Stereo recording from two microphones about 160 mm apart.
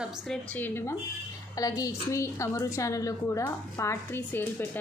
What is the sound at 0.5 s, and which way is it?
A woman's voice, 15° left (ahead or behind).